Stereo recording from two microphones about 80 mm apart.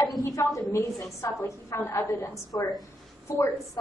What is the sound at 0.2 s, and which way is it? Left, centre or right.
A woman's voice, left.